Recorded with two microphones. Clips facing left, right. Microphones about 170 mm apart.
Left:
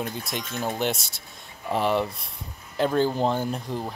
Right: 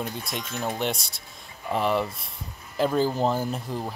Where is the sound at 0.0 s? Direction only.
Centre (ahead or behind).